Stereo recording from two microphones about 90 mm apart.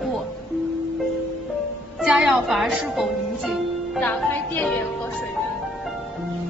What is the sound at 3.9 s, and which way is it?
Speech, 15° left (ahead or behind).